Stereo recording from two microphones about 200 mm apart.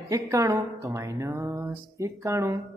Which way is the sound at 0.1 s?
15° right (ahead or behind).